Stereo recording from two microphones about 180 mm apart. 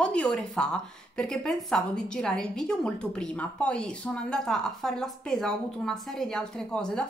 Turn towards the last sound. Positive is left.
turn(degrees=5)  # may be behind; listen again after turning